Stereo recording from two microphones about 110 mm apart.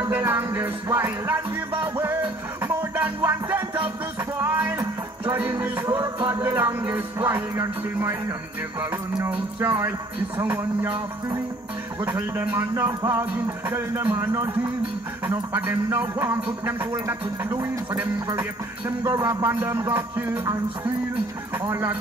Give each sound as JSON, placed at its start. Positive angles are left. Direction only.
{"t": 0.1, "sound": "speech", "side_deg": -20}
{"t": 2.0, "sound": "music", "side_deg": -20}
{"t": 4.4, "sound": "speech", "side_deg": -20}
{"t": 5.3, "sound": "music", "side_deg": -15}
{"t": 6.4, "sound": "speech", "side_deg": -20}
{"t": 9.3, "sound": "speech", "side_deg": -20}
{"t": 12.0, "sound": "a man's voice", "side_deg": -20}
{"t": 15.5, "sound": "speech", "side_deg": -20}
{"t": 21.6, "sound": "speech", "side_deg": -25}